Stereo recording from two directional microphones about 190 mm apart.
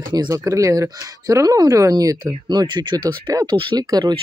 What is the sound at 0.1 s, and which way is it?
Speech, 20° right (ahead or behind).